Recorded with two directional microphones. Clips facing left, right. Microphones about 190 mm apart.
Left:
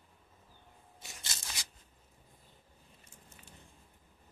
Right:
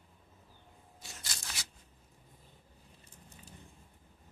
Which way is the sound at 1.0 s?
20° left (ahead or behind).